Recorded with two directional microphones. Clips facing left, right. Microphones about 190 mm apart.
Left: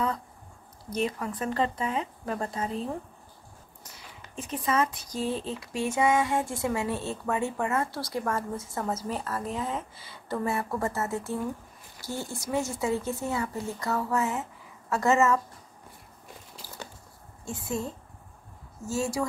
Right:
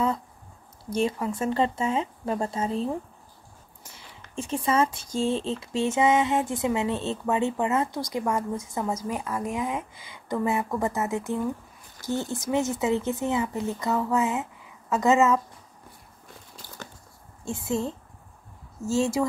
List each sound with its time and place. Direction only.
0.8 s speech: 25° right (ahead or behind)
17.6 s speech: 25° right (ahead or behind)